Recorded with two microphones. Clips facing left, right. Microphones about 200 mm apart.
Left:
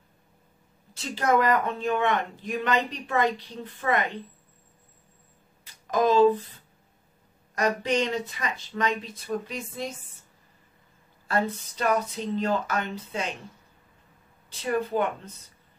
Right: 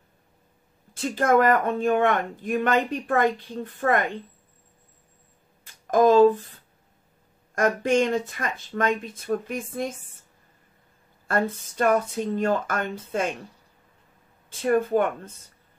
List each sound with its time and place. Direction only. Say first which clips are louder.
0.9 s speech: right 4 dB; 50° right (ahead or behind)
5.6 s speech: right 5 dB; 50° right (ahead or behind)
7.5 s speech: right 4 dB; 50° right (ahead or behind)
11.2 s speech: right 2 dB; 50° right (ahead or behind)
14.5 s speech: right 5 dB; 50° right (ahead or behind)